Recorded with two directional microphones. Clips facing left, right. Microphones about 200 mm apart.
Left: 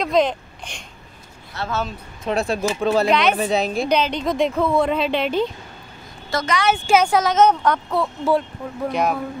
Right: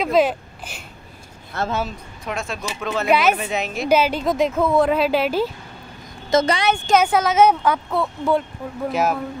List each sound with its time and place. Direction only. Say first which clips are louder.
0.0 s speech: right 1 dB; 5° right (ahead or behind)
1.5 s speech: right 4 dB; 50° right (ahead or behind)
2.2 s speech: left 7 dB; 35° left (ahead or behind)
3.1 s a woman's voice: right 1 dB; 5° right (ahead or behind)
3.3 s speech: left 5 dB; 35° left (ahead or behind)
3.8 s a woman's voice: right 2 dB; 5° right (ahead or behind)
6.3 s speech: right 8 dB; 20° right (ahead or behind)
7.0 s a woman's voice: right 1 dB; 5° right (ahead or behind)